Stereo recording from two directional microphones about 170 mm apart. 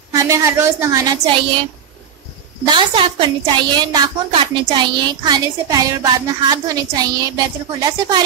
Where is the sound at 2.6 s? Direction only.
30° right (ahead or behind).